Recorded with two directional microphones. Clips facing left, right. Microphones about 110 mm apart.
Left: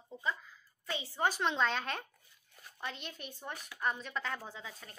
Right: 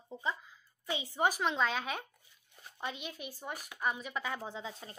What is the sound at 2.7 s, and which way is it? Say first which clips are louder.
Speech: right 2 dB; 20° right (ahead or behind).